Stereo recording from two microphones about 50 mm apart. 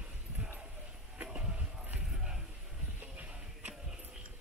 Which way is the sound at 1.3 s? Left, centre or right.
Right.